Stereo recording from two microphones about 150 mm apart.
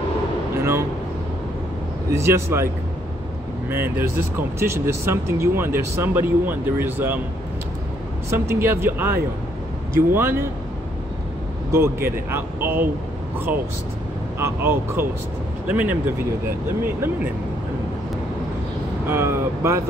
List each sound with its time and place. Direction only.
0.6 s speech: 15° right (ahead or behind)
2.0 s speech: 20° right (ahead or behind)
3.7 s speech: 15° right (ahead or behind)
8.3 s speech: 15° right (ahead or behind)
11.7 s speech: 15° right (ahead or behind)
14.4 s speech: 15° right (ahead or behind)
19.0 s speech: 15° right (ahead or behind)